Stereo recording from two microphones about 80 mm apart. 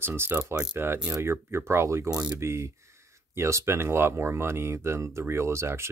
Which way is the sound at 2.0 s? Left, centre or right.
Right.